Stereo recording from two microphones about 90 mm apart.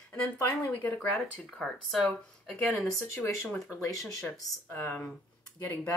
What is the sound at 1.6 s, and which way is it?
Speech, 5° left (ahead or behind).